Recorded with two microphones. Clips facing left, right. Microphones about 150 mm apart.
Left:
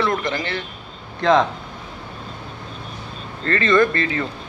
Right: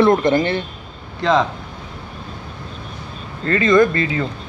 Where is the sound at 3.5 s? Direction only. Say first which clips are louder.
Right 3 dB; 15° right (ahead or behind).